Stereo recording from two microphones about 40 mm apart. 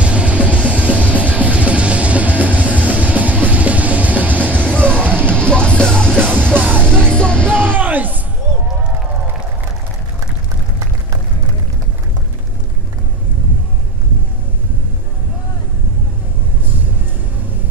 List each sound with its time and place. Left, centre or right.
0.0 s music: right
5.3 s music: left
6.6 s music: right
7.2 s music: left
7.6 s music: right